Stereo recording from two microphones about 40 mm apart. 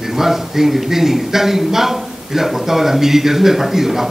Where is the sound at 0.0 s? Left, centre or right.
Centre.